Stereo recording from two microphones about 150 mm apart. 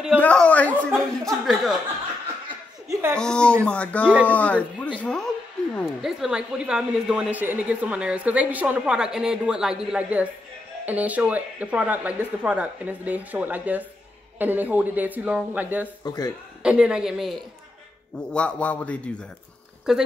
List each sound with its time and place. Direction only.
0.2 s a sound: 10° left (ahead or behind)
2.9 s a sound: 15° right (ahead or behind)
3.2 s a woman's voice: 5° left (ahead or behind); by 15.9 s 10° right (ahead or behind)
16.0 s speech: 25° left (ahead or behind)
16.6 s a woman's voice: 5° right (ahead or behind)
18.3 s a man's voice: 10° left (ahead or behind)
19.9 s a woman's voice: 5° right (ahead or behind)